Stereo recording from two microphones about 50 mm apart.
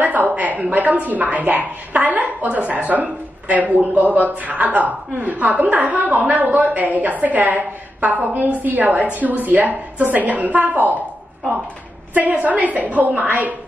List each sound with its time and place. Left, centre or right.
0.0 s a woman's voice: right
12.1 s a woman's voice: right